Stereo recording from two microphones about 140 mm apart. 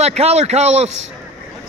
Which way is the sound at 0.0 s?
50° right (ahead or behind).